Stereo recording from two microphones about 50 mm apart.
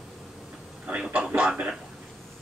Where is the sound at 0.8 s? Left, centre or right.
Centre.